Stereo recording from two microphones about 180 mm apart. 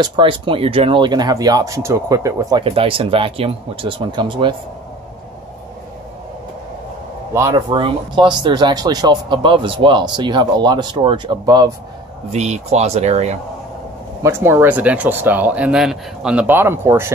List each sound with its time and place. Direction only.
0.0 s speech: 25° right (ahead or behind)
2.6 s speech: 30° right (ahead or behind)
7.3 s speech: 15° right (ahead or behind)
7.7 s speech: 25° right (ahead or behind)
12.3 s speech: 40° right (ahead or behind)
14.2 s speech: 15° right (ahead or behind)